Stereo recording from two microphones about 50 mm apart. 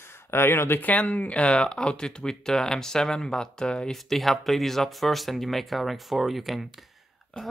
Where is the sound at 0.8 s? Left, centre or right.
Left; by 4.0 s centre.